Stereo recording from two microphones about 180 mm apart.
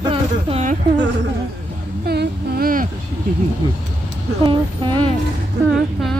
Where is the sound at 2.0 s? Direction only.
60° right (ahead or behind).